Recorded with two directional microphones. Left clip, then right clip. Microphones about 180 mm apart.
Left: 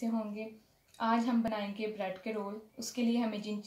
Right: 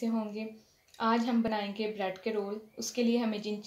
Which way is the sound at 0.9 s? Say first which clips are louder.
Right 2 dB; 45° right (ahead or behind).